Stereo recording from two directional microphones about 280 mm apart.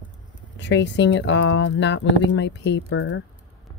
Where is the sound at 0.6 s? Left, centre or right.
Left.